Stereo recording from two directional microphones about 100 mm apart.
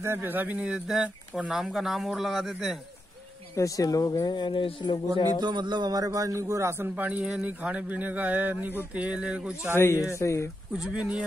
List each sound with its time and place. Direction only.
0.0 s speech: 20° right (ahead or behind); by 2.8 s centre (ahead or behind)
3.5 s speech: 35° left (ahead or behind); by 5.0 s 55° left (ahead or behind)
5.1 s a man's voice: 50° right (ahead or behind); by 7.1 s 25° right (ahead or behind)
7.1 s a man's voice: 10° right (ahead or behind)
10.1 s speech: 30° left (ahead or behind)
10.8 s a man's voice: 10° right (ahead or behind)